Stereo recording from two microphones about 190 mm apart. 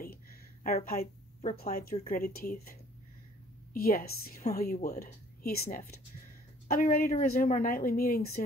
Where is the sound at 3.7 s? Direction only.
50° left (ahead or behind).